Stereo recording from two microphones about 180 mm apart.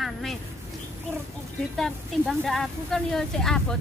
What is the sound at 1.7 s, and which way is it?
A woman's voice, centre (ahead or behind).